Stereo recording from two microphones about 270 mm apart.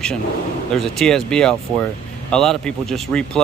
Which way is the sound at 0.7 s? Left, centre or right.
Centre.